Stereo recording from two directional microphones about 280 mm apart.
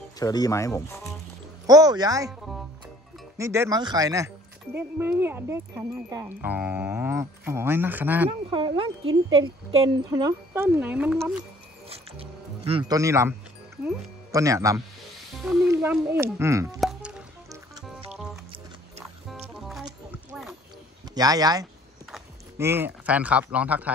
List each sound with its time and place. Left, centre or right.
0.2 s speech: centre
1.7 s speech: centre
3.3 s speech: centre
8.3 s speech: centre
11.9 s music: centre
13.8 s speech: centre
15.3 s music: centre
18.1 s music: centre
21.1 s speech: centre